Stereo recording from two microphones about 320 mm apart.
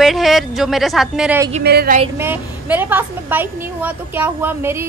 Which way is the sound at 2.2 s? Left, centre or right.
Centre.